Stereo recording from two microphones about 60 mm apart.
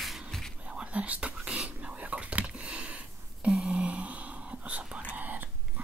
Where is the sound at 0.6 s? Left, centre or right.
Right.